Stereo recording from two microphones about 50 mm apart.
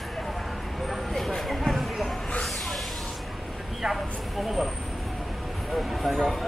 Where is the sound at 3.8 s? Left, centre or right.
Centre.